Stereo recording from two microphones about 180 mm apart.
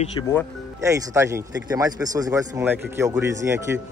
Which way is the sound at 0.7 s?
15° right (ahead or behind).